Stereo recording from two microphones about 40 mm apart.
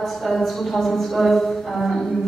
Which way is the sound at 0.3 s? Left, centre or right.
Centre.